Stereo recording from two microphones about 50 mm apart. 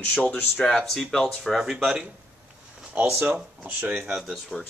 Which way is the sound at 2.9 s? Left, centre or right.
Right.